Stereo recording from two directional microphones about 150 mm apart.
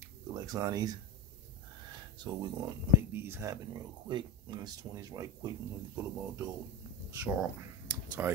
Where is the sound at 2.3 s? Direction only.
30° right (ahead or behind).